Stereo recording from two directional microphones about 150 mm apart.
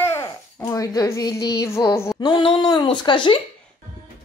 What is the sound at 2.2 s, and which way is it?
Speech, 35° left (ahead or behind).